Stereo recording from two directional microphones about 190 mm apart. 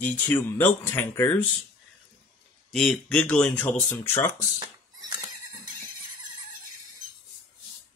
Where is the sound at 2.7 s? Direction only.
5° left (ahead or behind).